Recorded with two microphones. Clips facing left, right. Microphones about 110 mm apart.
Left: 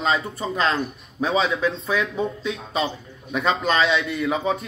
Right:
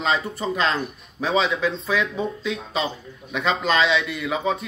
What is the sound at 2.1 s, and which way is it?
Speech, 30° left (ahead or behind).